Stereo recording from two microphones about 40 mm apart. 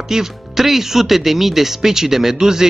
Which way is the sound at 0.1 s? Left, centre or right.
Centre.